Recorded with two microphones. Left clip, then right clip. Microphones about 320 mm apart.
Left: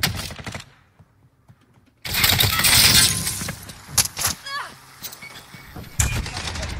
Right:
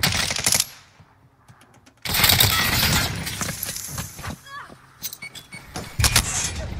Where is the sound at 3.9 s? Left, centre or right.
Left.